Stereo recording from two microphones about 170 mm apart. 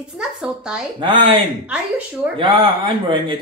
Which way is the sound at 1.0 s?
30° right (ahead or behind).